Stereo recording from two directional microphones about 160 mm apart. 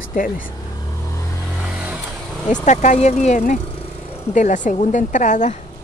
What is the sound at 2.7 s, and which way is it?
Speech, 45° left (ahead or behind).